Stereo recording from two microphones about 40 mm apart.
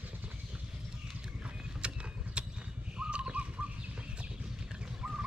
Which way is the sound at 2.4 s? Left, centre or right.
Right.